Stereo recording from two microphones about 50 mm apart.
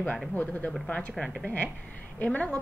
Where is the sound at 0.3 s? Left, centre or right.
Left.